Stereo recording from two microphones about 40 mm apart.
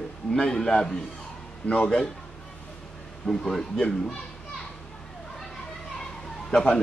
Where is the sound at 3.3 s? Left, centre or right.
Centre.